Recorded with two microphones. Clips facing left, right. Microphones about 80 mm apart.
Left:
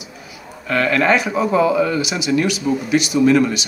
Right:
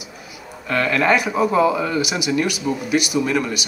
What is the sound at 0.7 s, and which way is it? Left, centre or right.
A man's voice, centre.